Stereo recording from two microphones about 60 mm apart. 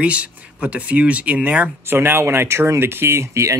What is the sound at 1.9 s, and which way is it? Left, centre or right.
Speech, right.